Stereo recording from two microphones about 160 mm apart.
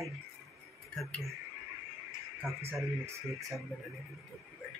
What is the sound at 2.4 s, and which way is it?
Speech, centre (ahead or behind).